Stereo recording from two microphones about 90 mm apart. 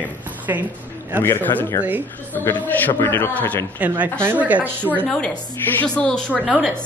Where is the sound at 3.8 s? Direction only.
15° right (ahead or behind).